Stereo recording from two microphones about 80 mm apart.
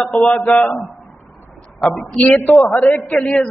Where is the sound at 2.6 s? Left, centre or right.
Left.